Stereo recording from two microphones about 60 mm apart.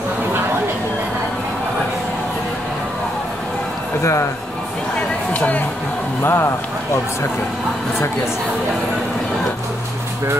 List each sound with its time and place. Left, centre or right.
4.0 s speech: left
5.3 s speech: left
6.2 s speech: left